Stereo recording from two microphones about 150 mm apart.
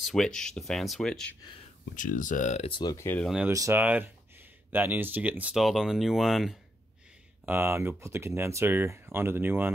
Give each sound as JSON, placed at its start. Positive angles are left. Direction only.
{"t": 0.0, "sound": "speech", "side_deg": 5}
{"t": 2.0, "sound": "speech", "side_deg": 60}
{"t": 2.7, "sound": "speech", "side_deg": 25}
{"t": 3.4, "sound": "speech", "side_deg": -15}
{"t": 7.4, "sound": "speech", "side_deg": -15}